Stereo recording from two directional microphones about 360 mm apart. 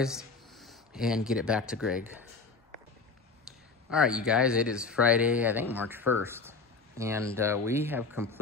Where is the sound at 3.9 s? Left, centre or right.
Centre.